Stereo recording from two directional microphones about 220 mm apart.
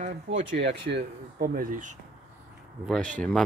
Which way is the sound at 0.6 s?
50° right (ahead or behind).